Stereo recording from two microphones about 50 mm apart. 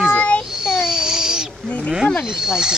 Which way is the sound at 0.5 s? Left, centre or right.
Centre.